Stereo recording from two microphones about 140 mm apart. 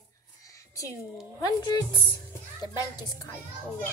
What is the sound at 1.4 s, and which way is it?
A woman's voice, 25° left (ahead or behind).